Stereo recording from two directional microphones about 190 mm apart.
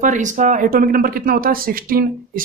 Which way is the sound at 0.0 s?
40° right (ahead or behind).